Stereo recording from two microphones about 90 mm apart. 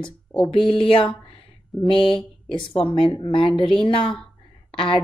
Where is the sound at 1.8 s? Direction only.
75° left (ahead or behind).